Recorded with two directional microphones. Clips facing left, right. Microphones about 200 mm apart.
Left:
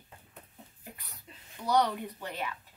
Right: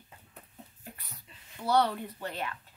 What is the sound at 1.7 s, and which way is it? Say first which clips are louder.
Speech: right 1 dB; 15° left (ahead or behind).